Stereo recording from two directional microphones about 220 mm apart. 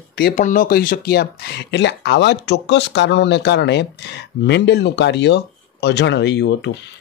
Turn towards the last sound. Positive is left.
turn(degrees=50)  # may be behind; listen again after turning